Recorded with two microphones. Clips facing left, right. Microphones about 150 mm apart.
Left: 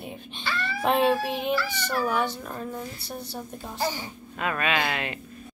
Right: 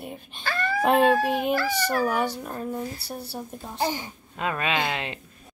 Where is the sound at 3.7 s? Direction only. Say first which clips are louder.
Right 2 dB; 20° right (ahead or behind).